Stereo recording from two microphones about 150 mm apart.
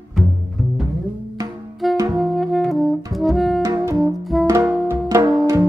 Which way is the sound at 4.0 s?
Centre (ahead or behind).